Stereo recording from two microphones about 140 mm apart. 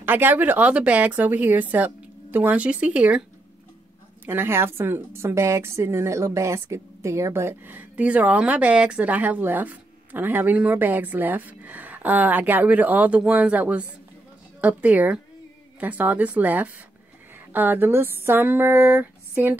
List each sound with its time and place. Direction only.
0.0 s a woman's voice: 15° right (ahead or behind)
4.3 s a woman's voice: 15° right (ahead or behind)